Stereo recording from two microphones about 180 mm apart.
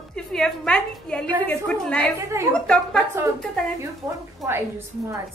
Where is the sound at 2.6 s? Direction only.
5° left (ahead or behind).